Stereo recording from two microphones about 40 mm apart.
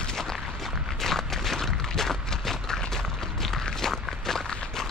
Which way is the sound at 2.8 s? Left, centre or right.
Centre.